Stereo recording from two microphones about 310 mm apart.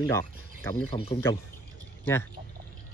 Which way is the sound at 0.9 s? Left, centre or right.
Centre.